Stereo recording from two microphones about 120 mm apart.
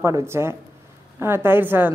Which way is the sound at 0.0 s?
25° right (ahead or behind).